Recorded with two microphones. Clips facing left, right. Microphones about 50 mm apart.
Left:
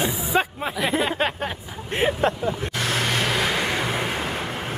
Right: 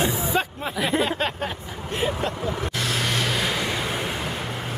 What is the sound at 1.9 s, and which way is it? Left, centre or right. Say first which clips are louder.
Speech: left 4 dB; left.